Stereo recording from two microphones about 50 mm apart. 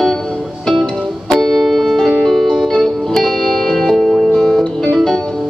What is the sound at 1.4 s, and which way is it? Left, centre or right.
Music, centre.